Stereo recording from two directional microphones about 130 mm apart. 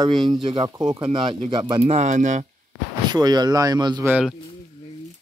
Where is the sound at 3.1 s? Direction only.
30° right (ahead or behind).